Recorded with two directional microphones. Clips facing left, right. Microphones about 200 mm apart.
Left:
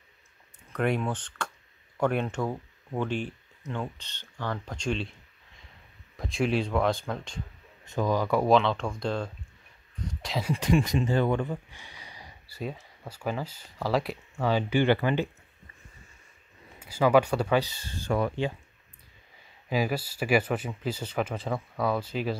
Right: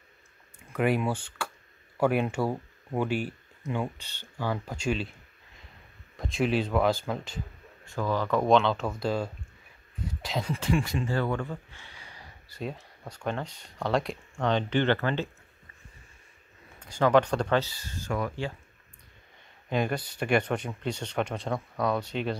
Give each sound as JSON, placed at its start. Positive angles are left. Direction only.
{"t": 0.7, "sound": "speech", "side_deg": -5}
{"t": 6.1, "sound": "speech", "side_deg": 0}
{"t": 7.8, "sound": "speech", "side_deg": 20}
{"t": 10.5, "sound": "speech", "side_deg": 20}
{"t": 16.8, "sound": "speech", "side_deg": 5}
{"t": 17.7, "sound": "speech", "side_deg": 30}
{"t": 19.7, "sound": "speech", "side_deg": 5}